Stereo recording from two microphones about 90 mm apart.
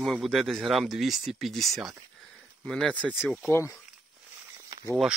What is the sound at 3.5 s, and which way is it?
Speech, 30° left (ahead or behind).